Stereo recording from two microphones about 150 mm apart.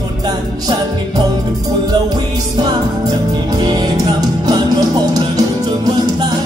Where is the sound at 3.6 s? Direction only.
25° right (ahead or behind).